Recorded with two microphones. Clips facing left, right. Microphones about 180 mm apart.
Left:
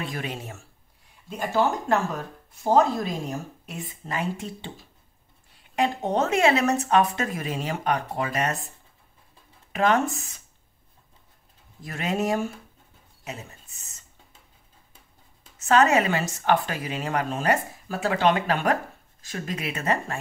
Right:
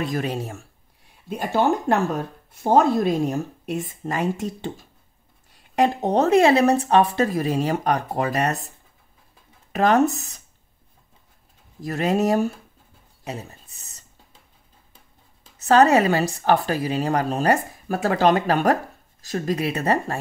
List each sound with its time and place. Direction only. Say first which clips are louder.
0.0 s speech: right 7 dB; 40° right (ahead or behind)
2.6 s speech: right 3 dB; 55° right (ahead or behind)
9.7 s speech: right 4 dB; 40° right (ahead or behind)
11.8 s speech: right 6 dB; 40° right (ahead or behind)
13.2 s a sound: right 5 dB; 35° right (ahead or behind)
15.5 s speech: right 4 dB; 35° right (ahead or behind)